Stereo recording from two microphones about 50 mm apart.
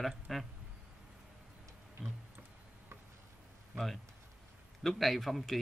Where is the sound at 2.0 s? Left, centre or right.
Centre.